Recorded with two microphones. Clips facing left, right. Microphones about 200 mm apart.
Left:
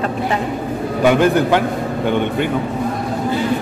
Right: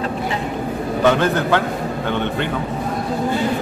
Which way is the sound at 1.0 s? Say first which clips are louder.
Left 4 dB; 10° left (ahead or behind).